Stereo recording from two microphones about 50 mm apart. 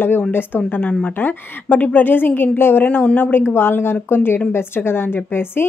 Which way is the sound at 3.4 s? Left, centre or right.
Left.